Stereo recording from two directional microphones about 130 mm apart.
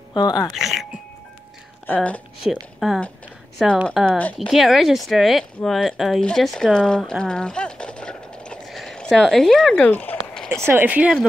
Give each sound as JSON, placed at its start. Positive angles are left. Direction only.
{"t": 0.1, "sound": "speech", "side_deg": 35}
{"t": 0.5, "sound": "speech", "side_deg": 0}
{"t": 2.4, "sound": "speech", "side_deg": 0}
{"t": 9.8, "sound": "speech", "side_deg": 15}
{"t": 10.3, "sound": "a sound", "side_deg": 5}
{"t": 10.7, "sound": "speech", "side_deg": -15}